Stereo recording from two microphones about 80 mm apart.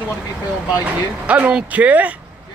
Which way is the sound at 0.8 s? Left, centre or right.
Centre.